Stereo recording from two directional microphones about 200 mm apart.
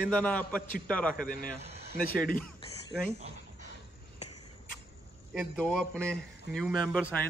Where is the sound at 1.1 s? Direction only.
45° left (ahead or behind).